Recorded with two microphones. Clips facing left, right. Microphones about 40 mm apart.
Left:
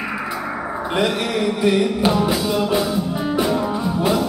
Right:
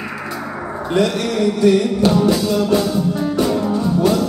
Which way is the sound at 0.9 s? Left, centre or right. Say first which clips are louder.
Right 3 dB; centre.